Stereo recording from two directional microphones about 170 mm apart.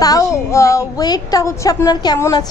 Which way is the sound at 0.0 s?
20° left (ahead or behind).